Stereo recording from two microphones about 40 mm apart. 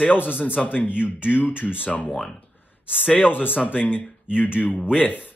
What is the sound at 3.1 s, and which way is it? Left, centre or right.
Speech, left.